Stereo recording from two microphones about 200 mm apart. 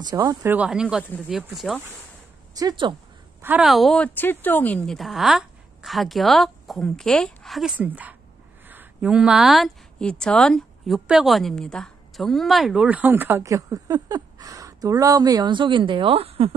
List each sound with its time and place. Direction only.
0.0 s speech: 20° right (ahead or behind); by 1.8 s centre (ahead or behind)
2.5 s speech: 20° right (ahead or behind)
3.4 s speech: 5° right (ahead or behind); by 16.5 s 30° right (ahead or behind)